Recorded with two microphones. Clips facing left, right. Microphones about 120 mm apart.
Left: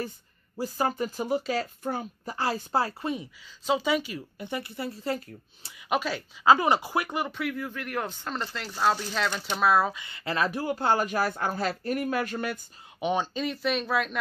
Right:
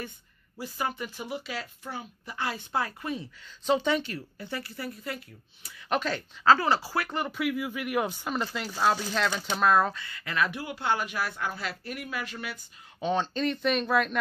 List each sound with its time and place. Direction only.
0.6 s speech: 35° left (ahead or behind)
3.6 s speech: 5° left (ahead or behind)
4.4 s speech: 20° left (ahead or behind)
5.7 s speech: 10° left (ahead or behind)
7.2 s speech: centre (ahead or behind)
10.0 s speech: 30° left (ahead or behind); by 12.5 s 45° left (ahead or behind)
13.0 s speech: 10° left (ahead or behind)